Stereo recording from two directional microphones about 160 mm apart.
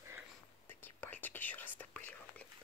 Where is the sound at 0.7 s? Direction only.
10° left (ahead or behind).